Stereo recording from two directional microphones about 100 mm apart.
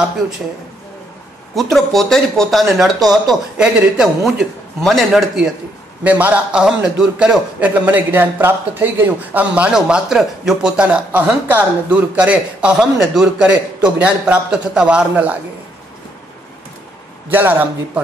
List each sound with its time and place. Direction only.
1.5 s a man's voice: centre (ahead or behind)
6.0 s a man's voice: 15° right (ahead or behind)
17.3 s a man's voice: 20° right (ahead or behind)